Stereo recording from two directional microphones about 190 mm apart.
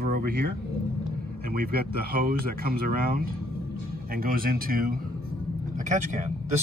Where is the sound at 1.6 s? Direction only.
50° right (ahead or behind).